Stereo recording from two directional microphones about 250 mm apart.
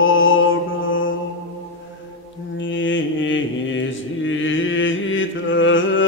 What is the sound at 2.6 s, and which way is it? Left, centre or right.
Mantra, left.